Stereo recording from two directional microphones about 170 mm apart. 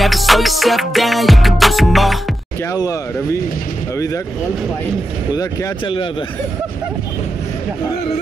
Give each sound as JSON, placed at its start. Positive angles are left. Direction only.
{"t": 0.0, "sound": "music", "side_deg": 0}
{"t": 2.7, "sound": "speech", "side_deg": 20}
{"t": 5.3, "sound": "speech", "side_deg": 25}